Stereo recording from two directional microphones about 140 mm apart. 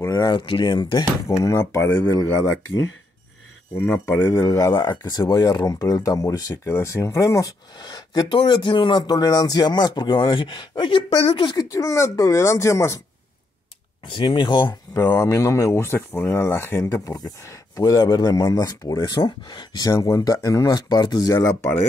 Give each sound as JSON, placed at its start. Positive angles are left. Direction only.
{"t": 0.0, "sound": "speech", "side_deg": 25}
{"t": 1.2, "sound": "speech", "side_deg": 20}
{"t": 3.7, "sound": "speech", "side_deg": 15}
{"t": 11.4, "sound": "speech", "side_deg": 25}
{"t": 14.0, "sound": "speech", "side_deg": 35}
{"t": 15.0, "sound": "speech", "side_deg": 20}